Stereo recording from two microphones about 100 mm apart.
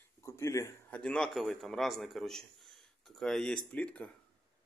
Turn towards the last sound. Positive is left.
turn(degrees=15)  # may be behind; listen again after turning